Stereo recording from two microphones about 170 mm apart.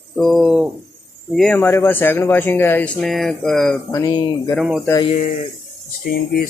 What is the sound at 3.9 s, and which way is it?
Speech, 20° left (ahead or behind).